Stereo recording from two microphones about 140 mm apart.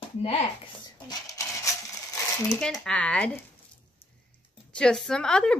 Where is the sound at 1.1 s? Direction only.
25° left (ahead or behind).